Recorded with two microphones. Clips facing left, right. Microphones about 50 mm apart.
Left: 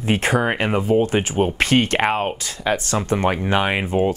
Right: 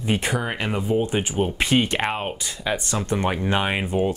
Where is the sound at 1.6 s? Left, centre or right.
Left.